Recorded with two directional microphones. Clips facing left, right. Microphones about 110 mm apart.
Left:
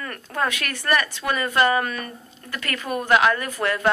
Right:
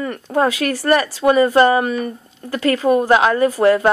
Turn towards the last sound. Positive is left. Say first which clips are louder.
# right 10 dB
turn(degrees=-30)  # may be behind; listen again after turning